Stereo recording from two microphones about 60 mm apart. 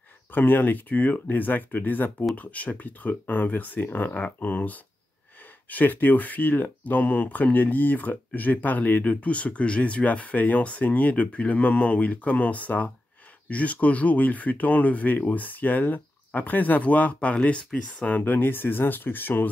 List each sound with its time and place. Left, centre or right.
0.3 s speech: left